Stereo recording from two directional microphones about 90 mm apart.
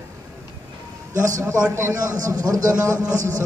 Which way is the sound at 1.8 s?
30° right (ahead or behind).